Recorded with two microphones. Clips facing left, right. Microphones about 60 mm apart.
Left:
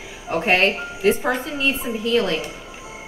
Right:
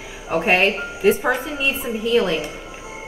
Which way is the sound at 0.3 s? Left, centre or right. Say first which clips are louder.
Right 1 dB; centre.